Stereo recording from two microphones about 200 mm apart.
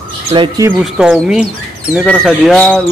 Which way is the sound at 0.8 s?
5° right (ahead or behind).